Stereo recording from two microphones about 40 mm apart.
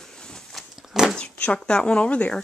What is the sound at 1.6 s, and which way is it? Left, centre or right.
Speech, left.